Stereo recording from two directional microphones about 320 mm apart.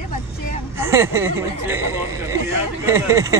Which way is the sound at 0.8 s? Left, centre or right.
Centre.